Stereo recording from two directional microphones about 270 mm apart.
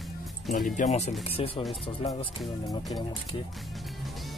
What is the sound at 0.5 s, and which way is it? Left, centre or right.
Speech, left.